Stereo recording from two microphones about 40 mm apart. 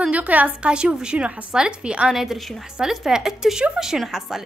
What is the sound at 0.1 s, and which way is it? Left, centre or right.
Speech, right.